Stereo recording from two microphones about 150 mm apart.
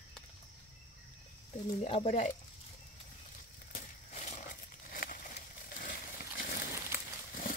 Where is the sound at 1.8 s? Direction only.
50° left (ahead or behind).